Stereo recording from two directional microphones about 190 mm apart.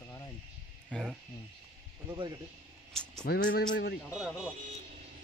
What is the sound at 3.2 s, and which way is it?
Speech, 55° left (ahead or behind).